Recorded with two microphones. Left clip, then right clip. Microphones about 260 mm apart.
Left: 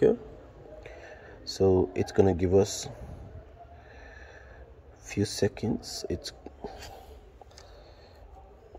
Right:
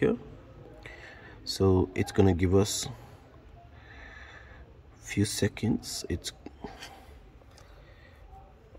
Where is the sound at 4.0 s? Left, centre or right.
Centre.